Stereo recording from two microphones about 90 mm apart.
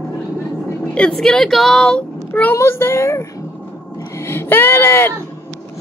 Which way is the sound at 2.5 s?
30° left (ahead or behind).